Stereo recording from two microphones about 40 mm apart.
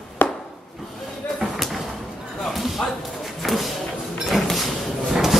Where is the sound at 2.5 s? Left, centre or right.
Centre.